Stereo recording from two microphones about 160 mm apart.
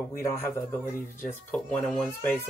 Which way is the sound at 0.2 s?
15° left (ahead or behind).